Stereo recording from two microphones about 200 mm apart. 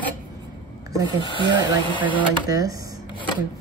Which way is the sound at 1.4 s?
20° right (ahead or behind).